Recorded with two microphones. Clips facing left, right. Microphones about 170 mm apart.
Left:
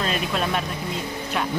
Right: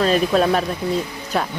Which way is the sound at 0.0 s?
40° right (ahead or behind).